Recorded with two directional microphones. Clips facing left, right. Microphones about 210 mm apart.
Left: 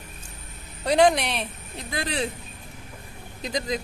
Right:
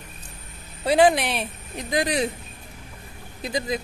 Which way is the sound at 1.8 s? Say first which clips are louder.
Right 5 dB; 15° right (ahead or behind).